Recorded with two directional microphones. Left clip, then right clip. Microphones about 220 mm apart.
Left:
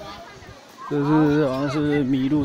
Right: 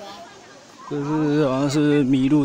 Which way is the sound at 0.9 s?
Centre (ahead or behind).